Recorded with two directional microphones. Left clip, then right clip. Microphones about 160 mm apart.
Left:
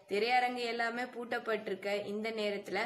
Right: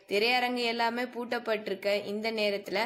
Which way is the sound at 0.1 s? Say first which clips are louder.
Right 4 dB; 35° right (ahead or behind).